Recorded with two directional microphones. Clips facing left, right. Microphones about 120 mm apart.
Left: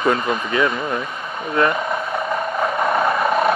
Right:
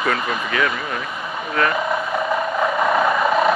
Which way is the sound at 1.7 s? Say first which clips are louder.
Right 1 dB; 5° right (ahead or behind).